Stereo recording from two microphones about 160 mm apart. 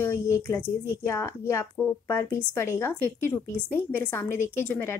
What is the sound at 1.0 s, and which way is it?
A woman's voice, 15° left (ahead or behind).